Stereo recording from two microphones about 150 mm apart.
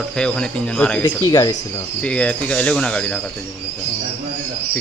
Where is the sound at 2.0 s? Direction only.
5° left (ahead or behind).